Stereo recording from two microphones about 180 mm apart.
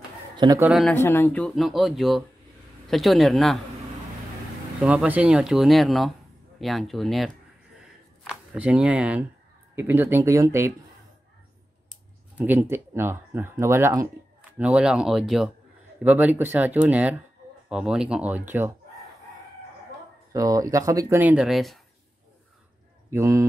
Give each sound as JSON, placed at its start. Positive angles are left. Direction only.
{"t": 0.4, "sound": "a man's voice", "side_deg": -20}
{"t": 0.7, "sound": "speech", "side_deg": 0}
{"t": 0.9, "sound": "speech", "side_deg": 15}
{"t": 4.8, "sound": "speech", "side_deg": -5}
{"t": 7.8, "sound": "a sound", "side_deg": 5}
{"t": 8.5, "sound": "speech", "side_deg": -5}
{"t": 12.4, "sound": "speech", "side_deg": -10}
{"t": 20.3, "sound": "speech", "side_deg": -20}
{"t": 21.2, "sound": "speech", "side_deg": -5}
{"t": 23.0, "sound": "speech", "side_deg": -15}